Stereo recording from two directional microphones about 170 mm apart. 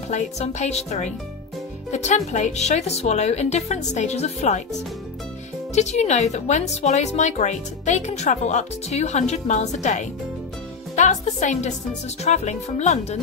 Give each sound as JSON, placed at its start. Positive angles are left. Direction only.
{"t": 0.1, "sound": "speech", "side_deg": 40}
{"t": 5.8, "sound": "speech", "side_deg": 40}